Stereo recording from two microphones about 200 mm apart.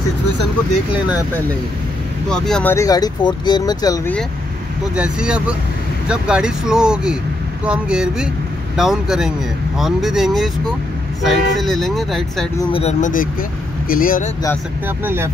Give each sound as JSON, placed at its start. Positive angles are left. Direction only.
{"t": 2.2, "sound": "speech", "side_deg": 5}
{"t": 2.7, "sound": "speech", "side_deg": 15}
{"t": 4.9, "sound": "speech", "side_deg": -5}
{"t": 12.7, "sound": "speech", "side_deg": 35}
{"t": 15.0, "sound": "speech", "side_deg": -10}